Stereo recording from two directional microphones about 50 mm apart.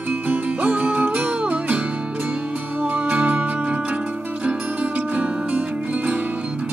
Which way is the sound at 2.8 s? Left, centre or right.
Right.